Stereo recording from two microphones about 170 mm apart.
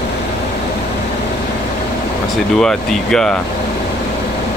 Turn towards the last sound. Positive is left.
turn(degrees=5)  # may be behind; listen again after turning